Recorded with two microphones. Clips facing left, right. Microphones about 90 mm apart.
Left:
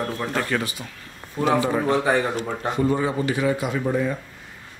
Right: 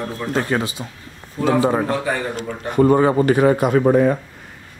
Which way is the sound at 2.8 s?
55° right (ahead or behind).